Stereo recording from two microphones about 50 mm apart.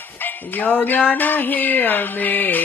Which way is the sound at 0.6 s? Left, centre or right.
Left.